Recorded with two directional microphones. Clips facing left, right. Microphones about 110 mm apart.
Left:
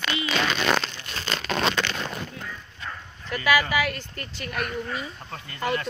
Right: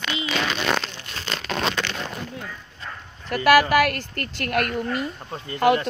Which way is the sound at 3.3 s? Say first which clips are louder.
Right 6 dB; 60° right (ahead or behind).